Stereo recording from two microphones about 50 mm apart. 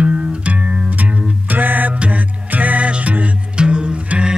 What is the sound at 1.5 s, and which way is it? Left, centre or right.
Music, right.